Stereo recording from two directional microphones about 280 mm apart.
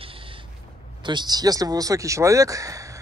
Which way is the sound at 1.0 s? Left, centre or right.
Centre.